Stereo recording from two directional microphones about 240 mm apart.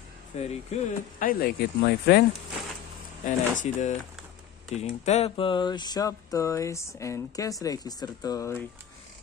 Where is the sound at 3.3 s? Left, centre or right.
Left; by 8.6 s centre.